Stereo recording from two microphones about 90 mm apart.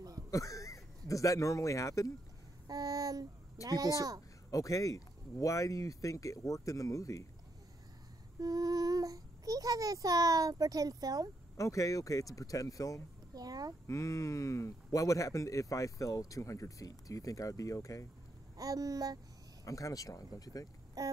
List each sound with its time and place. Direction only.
0.3 s speech: 35° left (ahead or behind)
2.7 s a sound: 45° right (ahead or behind)
3.6 s child singing: 45° right (ahead or behind)
4.5 s speech: 40° left (ahead or behind)
8.4 s child singing: 45° right (ahead or behind)
11.5 s speech: 35° left (ahead or behind)
13.3 s child singing: 45° right (ahead or behind)
13.8 s speech: 35° left (ahead or behind)
18.6 s child singing: 40° right (ahead or behind)
19.6 s speech: 40° left (ahead or behind)
21.0 s a sound: 40° right (ahead or behind)